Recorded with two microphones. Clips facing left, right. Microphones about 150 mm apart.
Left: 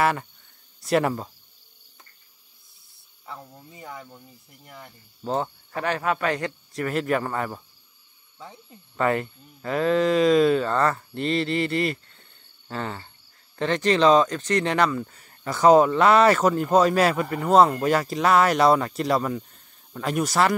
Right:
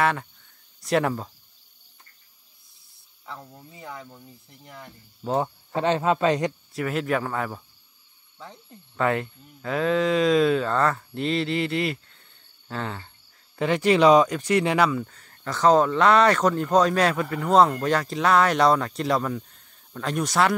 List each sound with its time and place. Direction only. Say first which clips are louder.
0.0 s speech: left 1 dB; 5° left (ahead or behind)
3.3 s speech: even; centre (ahead or behind)
5.8 s speech: right 4 dB; 20° right (ahead or behind)
6.7 s speech: left 3 dB; centre (ahead or behind)
12.6 s cricket: left 1 dB; centre (ahead or behind)
13.6 s speech: right 1 dB; 10° right (ahead or behind)
15.0 s speech: left 2 dB; 10° left (ahead or behind)